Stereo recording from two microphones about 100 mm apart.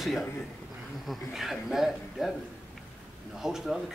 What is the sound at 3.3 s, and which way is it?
Speech, 5° right (ahead or behind).